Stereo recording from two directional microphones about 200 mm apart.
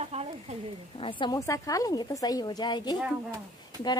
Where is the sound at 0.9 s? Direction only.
25° left (ahead or behind).